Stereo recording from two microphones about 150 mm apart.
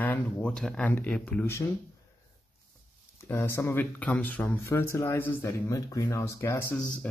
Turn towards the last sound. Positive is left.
turn(degrees=15)  # may be behind; listen again after turning